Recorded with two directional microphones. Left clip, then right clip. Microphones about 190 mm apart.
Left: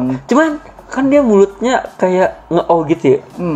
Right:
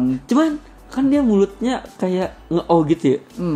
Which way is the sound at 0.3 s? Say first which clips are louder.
Left 7 dB; 20° right (ahead or behind).